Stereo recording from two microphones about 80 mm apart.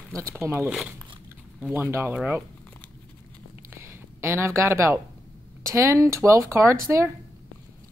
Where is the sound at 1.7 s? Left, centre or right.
Right.